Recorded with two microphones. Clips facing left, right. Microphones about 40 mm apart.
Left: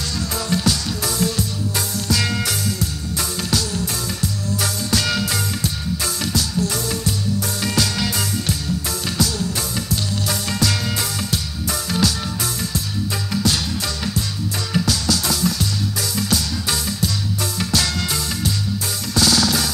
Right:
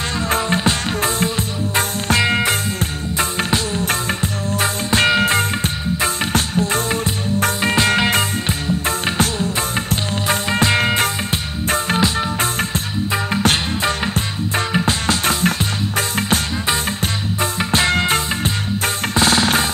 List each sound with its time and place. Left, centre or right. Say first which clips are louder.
0.3 s music: right 4 dB; right
10.2 s music: right 7 dB; right